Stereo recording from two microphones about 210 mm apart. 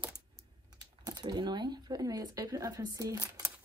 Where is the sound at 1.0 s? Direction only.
20° right (ahead or behind).